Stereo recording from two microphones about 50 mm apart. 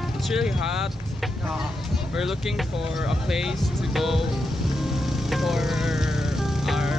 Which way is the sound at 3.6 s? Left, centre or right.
Centre.